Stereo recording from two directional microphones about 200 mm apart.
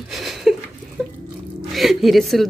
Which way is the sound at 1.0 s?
Centre (ahead or behind).